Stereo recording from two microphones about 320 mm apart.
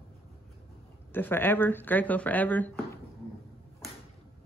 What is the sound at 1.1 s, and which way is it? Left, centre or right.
Speech, centre.